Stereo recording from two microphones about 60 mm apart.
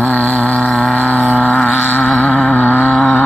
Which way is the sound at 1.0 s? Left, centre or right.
Left.